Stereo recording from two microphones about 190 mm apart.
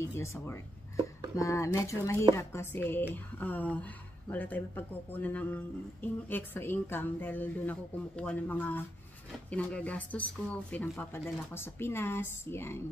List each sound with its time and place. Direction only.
0.0 s speech: 15° left (ahead or behind)